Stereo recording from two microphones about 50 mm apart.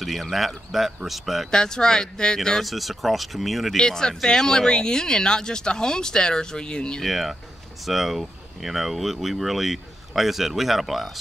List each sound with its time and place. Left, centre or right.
0.0 s speech: centre
1.5 s speech: centre
2.6 s speech: centre
3.7 s speech: centre
7.0 s speech: centre